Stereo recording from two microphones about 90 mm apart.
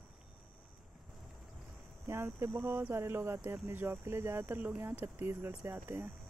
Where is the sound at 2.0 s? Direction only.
30° right (ahead or behind).